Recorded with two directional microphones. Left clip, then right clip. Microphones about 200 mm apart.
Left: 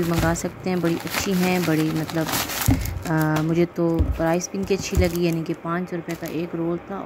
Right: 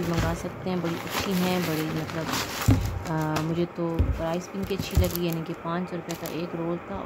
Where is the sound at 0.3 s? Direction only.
20° left (ahead or behind).